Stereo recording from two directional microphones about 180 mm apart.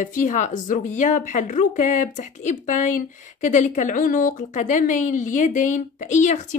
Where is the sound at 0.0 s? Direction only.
45° left (ahead or behind).